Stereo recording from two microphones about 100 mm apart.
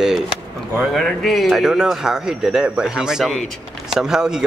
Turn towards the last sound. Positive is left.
turn(degrees=-5)  # may be behind; listen again after turning